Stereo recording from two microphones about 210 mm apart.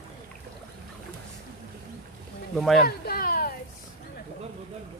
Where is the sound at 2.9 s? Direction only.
45° left (ahead or behind).